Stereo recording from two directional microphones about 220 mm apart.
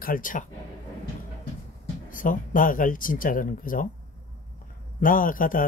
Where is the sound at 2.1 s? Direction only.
40° left (ahead or behind).